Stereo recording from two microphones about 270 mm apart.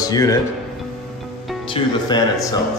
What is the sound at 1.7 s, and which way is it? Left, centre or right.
Speech, centre.